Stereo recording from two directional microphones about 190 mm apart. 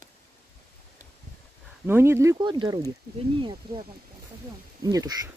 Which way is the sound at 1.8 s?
10° right (ahead or behind).